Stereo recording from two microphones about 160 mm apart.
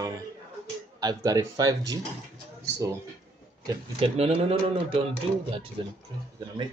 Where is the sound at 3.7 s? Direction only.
35° right (ahead or behind).